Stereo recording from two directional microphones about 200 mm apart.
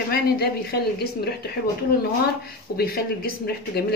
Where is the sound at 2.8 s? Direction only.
50° left (ahead or behind).